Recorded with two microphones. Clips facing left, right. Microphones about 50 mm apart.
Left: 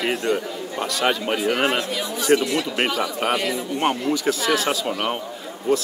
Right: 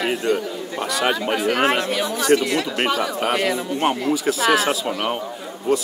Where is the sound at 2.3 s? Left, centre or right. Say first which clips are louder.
Right 1 dB; centre.